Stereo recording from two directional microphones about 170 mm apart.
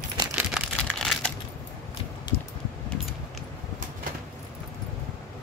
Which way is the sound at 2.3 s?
25° left (ahead or behind).